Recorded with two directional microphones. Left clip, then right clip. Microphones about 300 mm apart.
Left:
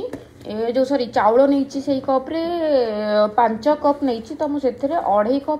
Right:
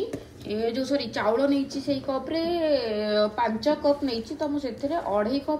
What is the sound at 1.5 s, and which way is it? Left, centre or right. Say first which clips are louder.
Speech: left 6 dB; centre.